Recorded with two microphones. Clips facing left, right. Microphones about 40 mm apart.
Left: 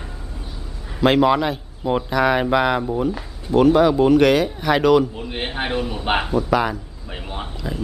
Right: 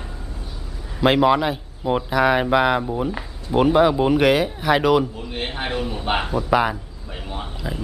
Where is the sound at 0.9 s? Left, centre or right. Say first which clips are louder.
Left 1 dB; centre.